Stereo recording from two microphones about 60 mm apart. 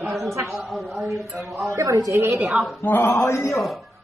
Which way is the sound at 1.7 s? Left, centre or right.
Right.